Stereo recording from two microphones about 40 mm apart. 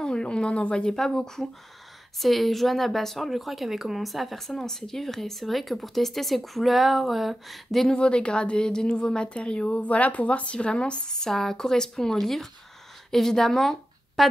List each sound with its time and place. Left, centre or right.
0.0 s speech: left
2.1 s a woman's voice: centre
7.9 s a woman's voice: left; by 14.2 s centre